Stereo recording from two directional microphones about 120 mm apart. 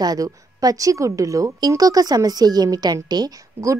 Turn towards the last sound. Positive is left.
turn(degrees=-30)  # may be behind; listen again after turning